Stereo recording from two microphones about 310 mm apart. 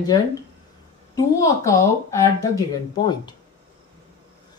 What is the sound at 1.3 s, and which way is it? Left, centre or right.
Speech, centre.